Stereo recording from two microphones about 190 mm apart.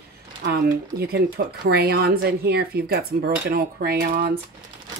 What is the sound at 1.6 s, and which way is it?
Speech, 55° right (ahead or behind).